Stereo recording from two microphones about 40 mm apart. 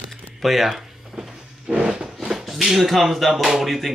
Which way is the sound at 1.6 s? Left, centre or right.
Right.